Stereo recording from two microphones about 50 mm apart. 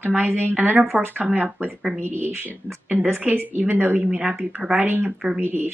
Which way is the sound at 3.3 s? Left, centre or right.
Right.